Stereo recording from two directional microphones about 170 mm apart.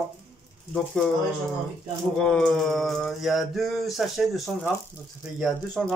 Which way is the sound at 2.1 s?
5° left (ahead or behind).